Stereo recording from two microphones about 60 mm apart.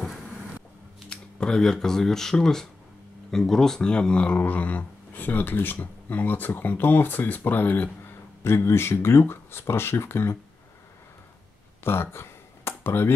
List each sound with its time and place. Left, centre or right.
1.1 s speech: centre; by 7.9 s left
8.5 s speech: left
11.8 s a sound: left